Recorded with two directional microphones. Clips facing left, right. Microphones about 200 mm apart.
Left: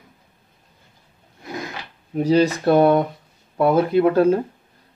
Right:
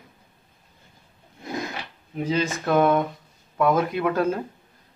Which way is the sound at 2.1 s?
40° left (ahead or behind).